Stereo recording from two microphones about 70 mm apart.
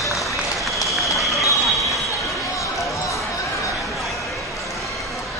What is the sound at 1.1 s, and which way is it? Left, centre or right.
Run, centre.